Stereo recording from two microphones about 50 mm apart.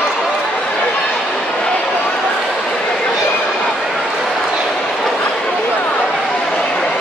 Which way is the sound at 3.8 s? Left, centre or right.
Centre.